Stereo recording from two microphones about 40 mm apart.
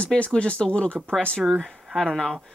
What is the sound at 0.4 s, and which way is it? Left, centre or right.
Speech, left.